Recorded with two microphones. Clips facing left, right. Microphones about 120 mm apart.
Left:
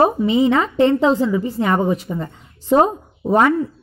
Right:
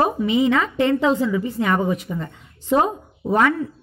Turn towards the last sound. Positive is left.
turn(degrees=35)  # may be behind; listen again after turning